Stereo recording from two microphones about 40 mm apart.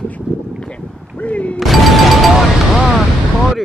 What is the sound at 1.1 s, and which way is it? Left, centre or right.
Speech, left.